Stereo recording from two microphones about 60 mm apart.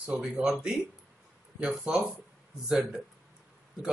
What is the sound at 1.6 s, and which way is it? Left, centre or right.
A man's voice, centre.